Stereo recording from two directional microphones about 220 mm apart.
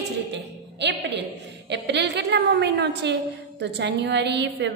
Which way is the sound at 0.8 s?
55° right (ahead or behind).